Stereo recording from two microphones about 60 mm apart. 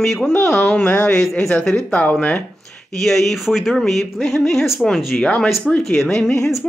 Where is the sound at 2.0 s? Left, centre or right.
Left.